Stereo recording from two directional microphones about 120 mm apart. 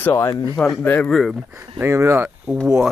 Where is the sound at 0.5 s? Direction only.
5° left (ahead or behind).